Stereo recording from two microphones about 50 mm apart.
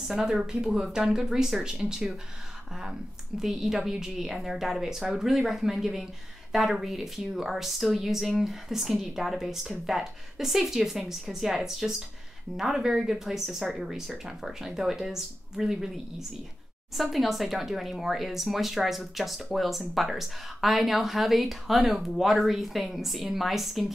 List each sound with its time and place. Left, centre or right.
0.1 s speech: centre
3.3 s speech: centre
16.9 s speech: centre